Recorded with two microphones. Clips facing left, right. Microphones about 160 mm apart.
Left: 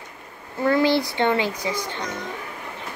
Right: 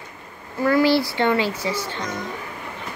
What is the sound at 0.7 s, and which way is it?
A child's voice, 20° left (ahead or behind).